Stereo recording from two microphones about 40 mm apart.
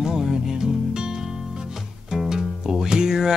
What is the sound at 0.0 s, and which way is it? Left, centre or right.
Music, centre.